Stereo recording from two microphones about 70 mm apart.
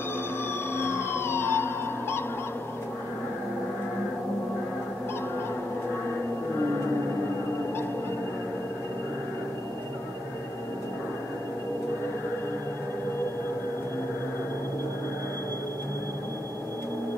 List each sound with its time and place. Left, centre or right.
0.7 s emergency vehicle: left